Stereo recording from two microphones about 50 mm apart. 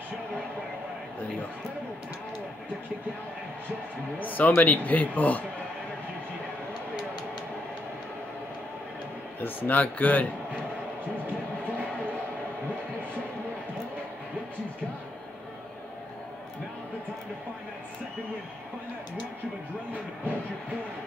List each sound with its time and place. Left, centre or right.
4.2 s speech: left
4.5 s speech: left
9.4 s speech: left